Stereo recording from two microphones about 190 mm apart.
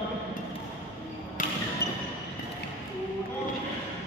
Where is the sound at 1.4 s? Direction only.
45° left (ahead or behind).